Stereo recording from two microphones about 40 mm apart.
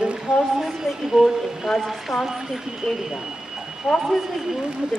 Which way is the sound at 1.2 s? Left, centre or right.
Centre.